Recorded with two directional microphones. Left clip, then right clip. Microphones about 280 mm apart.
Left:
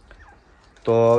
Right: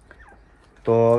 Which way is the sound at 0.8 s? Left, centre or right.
Centre.